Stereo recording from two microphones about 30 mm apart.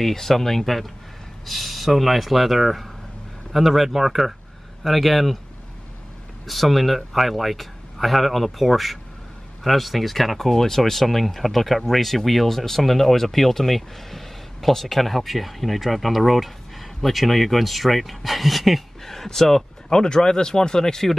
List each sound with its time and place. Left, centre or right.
0.0 s speech: centre
6.4 s speech: centre
19.0 s speech: centre
19.9 s speech: left